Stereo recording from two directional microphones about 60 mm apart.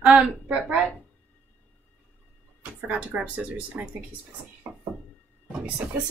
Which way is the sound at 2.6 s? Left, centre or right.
Right.